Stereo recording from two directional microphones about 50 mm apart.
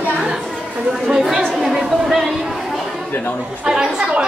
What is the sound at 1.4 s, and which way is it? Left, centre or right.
Chatter, centre.